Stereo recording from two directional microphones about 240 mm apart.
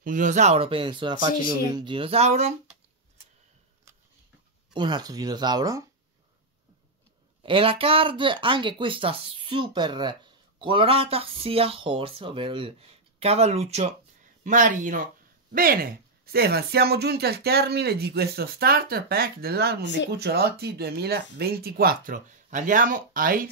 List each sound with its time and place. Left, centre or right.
0.0 s speech: right
4.7 s speech: centre
7.4 s speech: right